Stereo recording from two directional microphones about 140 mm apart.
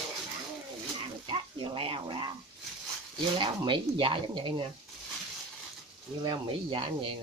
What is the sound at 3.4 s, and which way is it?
Speech, 35° right (ahead or behind).